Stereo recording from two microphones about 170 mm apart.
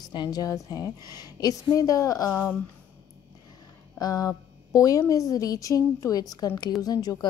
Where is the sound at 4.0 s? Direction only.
20° left (ahead or behind).